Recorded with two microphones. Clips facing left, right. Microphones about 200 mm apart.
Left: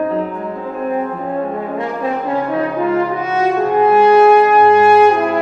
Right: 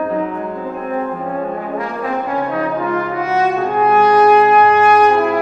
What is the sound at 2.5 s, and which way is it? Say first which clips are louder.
French horn: left 3 dB; 25° left (ahead or behind).